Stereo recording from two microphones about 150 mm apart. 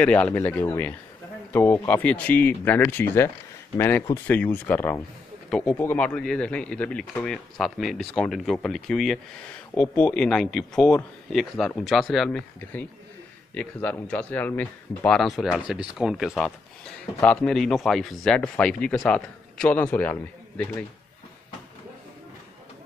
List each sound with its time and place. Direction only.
0.0 s speech: 10° left (ahead or behind)